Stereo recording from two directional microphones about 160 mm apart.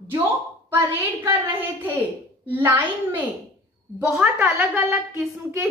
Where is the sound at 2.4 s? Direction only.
10° right (ahead or behind).